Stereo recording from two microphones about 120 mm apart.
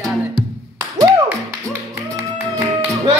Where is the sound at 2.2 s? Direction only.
20° right (ahead or behind).